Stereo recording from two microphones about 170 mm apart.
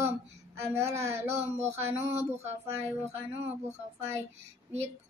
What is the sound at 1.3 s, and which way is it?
Speech, 40° right (ahead or behind).